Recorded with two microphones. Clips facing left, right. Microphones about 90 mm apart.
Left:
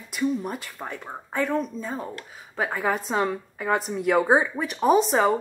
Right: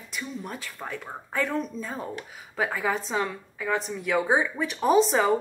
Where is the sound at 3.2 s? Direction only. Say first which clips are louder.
Left 4 dB; 35° left (ahead or behind).